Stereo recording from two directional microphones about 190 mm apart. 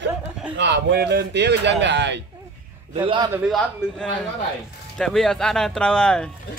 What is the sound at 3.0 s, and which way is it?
Speech, 25° right (ahead or behind).